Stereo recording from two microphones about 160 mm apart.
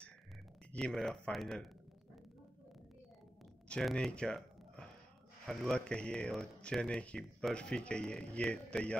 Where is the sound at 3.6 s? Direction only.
5° left (ahead or behind).